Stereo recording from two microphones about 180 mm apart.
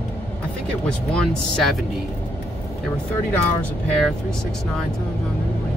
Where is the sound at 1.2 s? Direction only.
Centre (ahead or behind).